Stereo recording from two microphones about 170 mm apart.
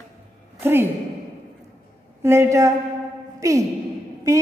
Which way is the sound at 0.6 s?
15° right (ahead or behind).